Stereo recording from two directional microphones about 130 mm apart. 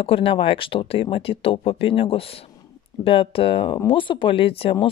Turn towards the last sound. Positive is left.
turn(degrees=45)  # may be behind; listen again after turning